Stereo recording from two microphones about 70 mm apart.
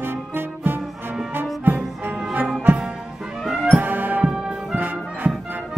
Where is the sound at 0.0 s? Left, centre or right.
Right.